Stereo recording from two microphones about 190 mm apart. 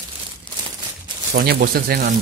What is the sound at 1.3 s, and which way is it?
Speech, 50° right (ahead or behind).